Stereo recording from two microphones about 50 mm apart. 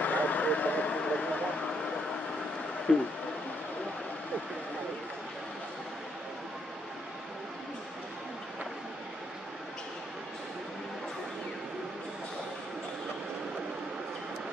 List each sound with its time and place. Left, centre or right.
0.0 s vehicle: left
2.9 s speech: centre